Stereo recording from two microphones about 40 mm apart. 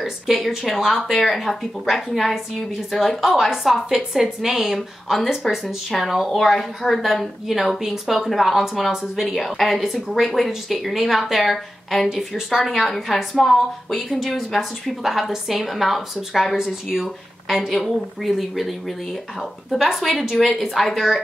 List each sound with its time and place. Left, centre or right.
0.0 s a woman's voice: centre
7.4 s a woman's voice: centre
8.1 s a woman's voice: centre
19.7 s a woman's voice: centre